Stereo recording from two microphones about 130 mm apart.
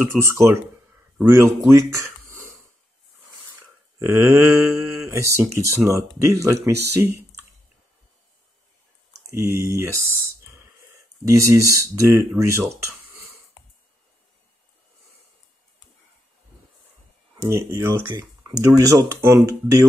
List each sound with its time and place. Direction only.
0.1 s speech: 20° right (ahead or behind)
3.5 s speech: 15° right (ahead or behind)
9.3 s speech: 25° right (ahead or behind)
17.4 s speech: 25° right (ahead or behind)